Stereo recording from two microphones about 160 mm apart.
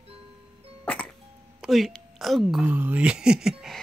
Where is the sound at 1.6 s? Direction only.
Centre (ahead or behind).